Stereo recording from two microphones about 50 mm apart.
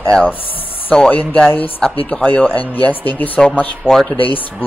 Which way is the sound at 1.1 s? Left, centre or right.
Left.